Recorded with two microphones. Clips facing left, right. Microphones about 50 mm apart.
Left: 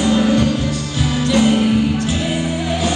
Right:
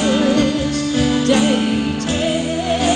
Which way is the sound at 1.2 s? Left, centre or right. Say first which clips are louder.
Left 3 dB; right.